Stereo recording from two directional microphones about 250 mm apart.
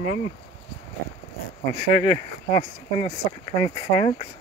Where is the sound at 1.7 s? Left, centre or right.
Left.